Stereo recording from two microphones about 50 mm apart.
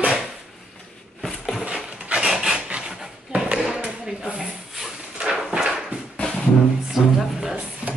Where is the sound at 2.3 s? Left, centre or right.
Centre.